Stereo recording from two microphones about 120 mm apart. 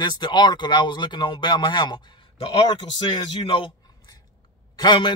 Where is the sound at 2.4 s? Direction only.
45° left (ahead or behind).